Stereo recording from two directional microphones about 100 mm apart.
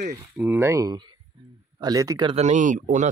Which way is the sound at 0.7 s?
45° right (ahead or behind).